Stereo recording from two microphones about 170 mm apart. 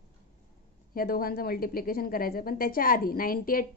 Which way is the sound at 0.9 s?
60° left (ahead or behind).